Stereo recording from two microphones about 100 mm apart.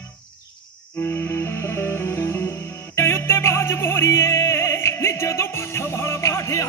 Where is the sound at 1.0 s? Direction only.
25° left (ahead or behind).